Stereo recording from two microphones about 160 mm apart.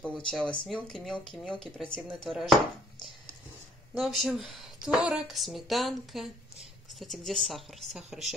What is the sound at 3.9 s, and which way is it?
Speech, centre (ahead or behind).